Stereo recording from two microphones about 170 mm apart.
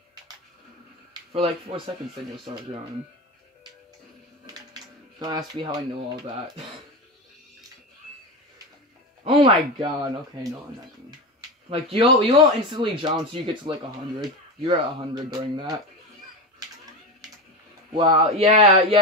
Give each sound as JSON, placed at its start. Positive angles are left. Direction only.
{"t": 1.1, "sound": "speech", "side_deg": -30}
{"t": 5.2, "sound": "speech", "side_deg": -25}
{"t": 9.2, "sound": "speech", "side_deg": -30}
{"t": 11.7, "sound": "speech", "side_deg": -35}
{"t": 17.9, "sound": "speech", "side_deg": -30}